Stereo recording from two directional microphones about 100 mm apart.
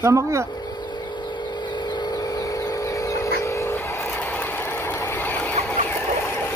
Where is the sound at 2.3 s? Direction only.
40° left (ahead or behind); by 5.5 s 20° left (ahead or behind).